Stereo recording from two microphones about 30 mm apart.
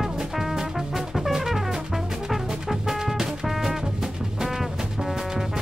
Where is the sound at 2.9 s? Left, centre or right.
Centre.